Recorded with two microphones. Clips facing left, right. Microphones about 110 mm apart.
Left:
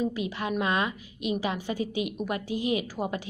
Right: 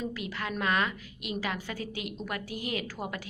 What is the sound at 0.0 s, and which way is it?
A woman's voice, 20° left (ahead or behind).